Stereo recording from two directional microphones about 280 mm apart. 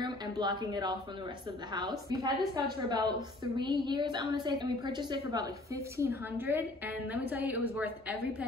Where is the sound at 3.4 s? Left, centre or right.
Centre.